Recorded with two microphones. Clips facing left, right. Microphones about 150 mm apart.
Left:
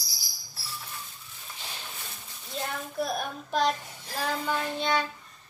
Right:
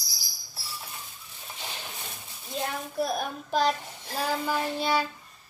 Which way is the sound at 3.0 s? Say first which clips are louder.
Right 2 dB; centre (ahead or behind).